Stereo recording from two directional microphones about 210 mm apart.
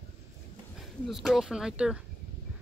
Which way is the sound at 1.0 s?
Centre (ahead or behind).